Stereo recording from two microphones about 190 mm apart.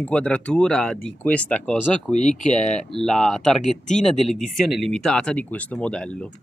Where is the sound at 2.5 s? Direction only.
35° left (ahead or behind).